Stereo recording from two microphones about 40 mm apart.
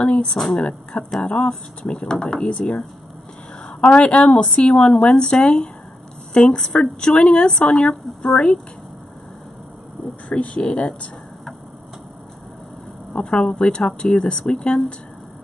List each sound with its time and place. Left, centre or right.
0.0 s a woman's voice: left
10.3 s a woman's voice: left
13.2 s a woman's voice: centre